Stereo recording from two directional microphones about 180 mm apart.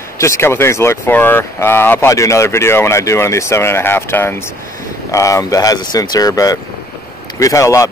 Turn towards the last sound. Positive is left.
turn(degrees=15)  # may be behind; listen again after turning